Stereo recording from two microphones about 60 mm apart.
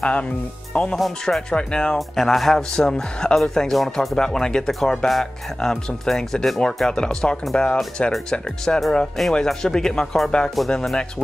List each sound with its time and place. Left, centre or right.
0.0 s speech: centre
0.9 s speech: centre
1.5 s speech: centre